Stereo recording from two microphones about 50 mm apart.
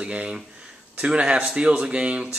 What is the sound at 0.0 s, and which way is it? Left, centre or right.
Speech, right.